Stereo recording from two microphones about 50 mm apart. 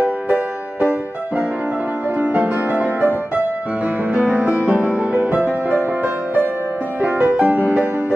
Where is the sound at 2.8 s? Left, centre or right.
Right; by 4.9 s centre.